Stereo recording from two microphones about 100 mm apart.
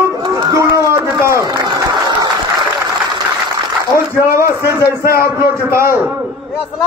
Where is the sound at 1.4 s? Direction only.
45° right (ahead or behind).